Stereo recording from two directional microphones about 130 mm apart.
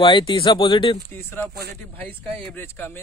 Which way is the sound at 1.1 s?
15° left (ahead or behind).